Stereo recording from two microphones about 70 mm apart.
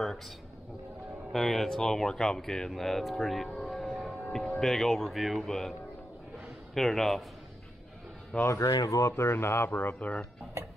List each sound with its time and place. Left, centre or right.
1.3 s a man's voice: centre
8.3 s speech: centre
8.6 s speech: left
9.1 s speech: left
9.8 s speech: left